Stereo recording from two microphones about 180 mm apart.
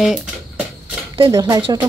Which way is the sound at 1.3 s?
20° right (ahead or behind).